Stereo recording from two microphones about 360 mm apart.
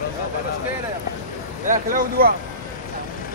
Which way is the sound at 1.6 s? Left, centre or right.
Right.